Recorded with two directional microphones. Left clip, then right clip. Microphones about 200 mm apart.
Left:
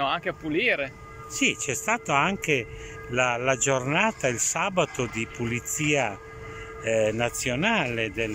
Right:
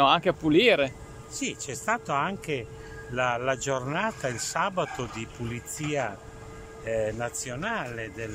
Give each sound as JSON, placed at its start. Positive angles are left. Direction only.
{"t": 0.0, "sound": "speech", "side_deg": -15}
{"t": 1.4, "sound": "speech", "side_deg": 5}